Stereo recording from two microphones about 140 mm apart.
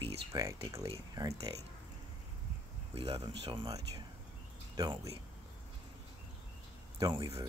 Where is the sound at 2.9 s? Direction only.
40° right (ahead or behind); by 5.2 s 25° right (ahead or behind).